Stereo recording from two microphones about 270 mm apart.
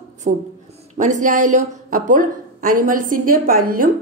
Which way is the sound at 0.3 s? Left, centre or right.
Right.